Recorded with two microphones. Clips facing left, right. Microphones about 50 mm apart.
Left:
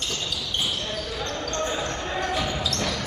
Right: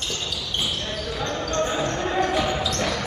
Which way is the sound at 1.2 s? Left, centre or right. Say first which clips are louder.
Right 5 dB; centre.